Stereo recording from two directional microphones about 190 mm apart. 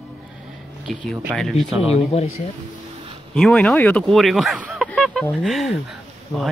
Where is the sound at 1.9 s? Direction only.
35° left (ahead or behind).